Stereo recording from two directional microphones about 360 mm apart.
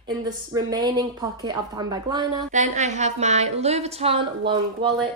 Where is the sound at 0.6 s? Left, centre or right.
Centre.